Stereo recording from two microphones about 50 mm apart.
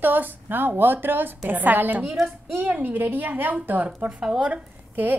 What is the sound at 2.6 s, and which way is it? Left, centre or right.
A woman's voice, right.